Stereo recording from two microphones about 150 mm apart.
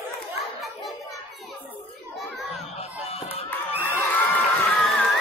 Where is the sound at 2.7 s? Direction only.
40° left (ahead or behind).